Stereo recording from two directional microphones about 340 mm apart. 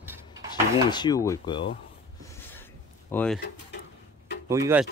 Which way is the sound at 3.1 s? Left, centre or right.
Centre.